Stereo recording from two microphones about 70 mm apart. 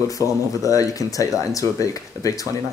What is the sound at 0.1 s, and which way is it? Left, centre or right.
Speech, left.